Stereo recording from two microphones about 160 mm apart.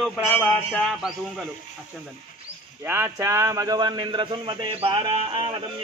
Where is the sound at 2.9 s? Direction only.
15° right (ahead or behind); by 5.6 s 35° right (ahead or behind).